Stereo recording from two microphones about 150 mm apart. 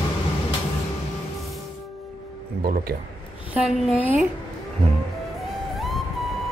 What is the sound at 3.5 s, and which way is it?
Speech, 5° right (ahead or behind).